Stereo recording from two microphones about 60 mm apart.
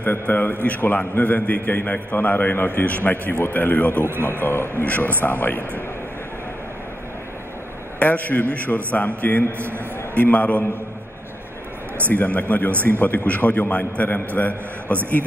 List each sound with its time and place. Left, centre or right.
0.0 s a man's voice: left
4.0 s speech: right
4.3 s a man's voice: left
4.8 s a man's voice: left
8.0 s a man's voice: left
12.1 s a man's voice: left